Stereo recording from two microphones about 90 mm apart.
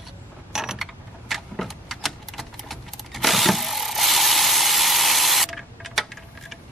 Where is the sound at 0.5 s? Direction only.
5° right (ahead or behind).